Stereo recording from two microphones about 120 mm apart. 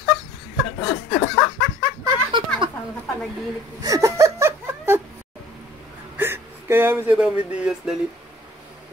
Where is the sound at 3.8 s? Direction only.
30° right (ahead or behind).